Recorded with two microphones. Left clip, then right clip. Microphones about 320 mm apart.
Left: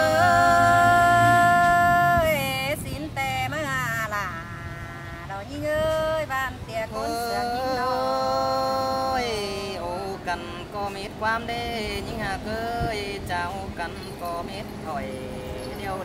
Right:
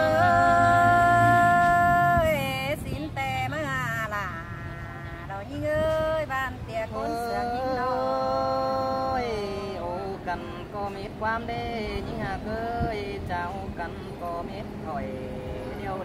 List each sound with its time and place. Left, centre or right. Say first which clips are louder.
0.0 s music: left 2 dB; centre
5.7 s male singing: left 1 dB; centre
9.1 s music: left 2 dB; centre
9.8 s music: left 2 dB; centre
11.2 s speech: left 3 dB; centre